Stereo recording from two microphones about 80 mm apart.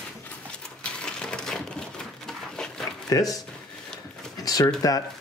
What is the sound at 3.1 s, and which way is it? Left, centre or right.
Speech, left.